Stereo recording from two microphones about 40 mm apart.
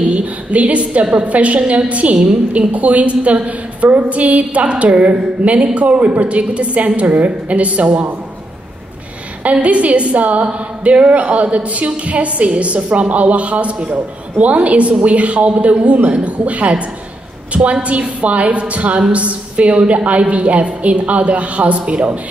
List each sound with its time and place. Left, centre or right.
0.1 s a woman's voice: right
9.4 s a woman's voice: right
17.8 s a woman's voice: right